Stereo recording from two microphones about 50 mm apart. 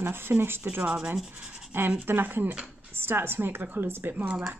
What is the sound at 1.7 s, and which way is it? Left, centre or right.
Speech, right.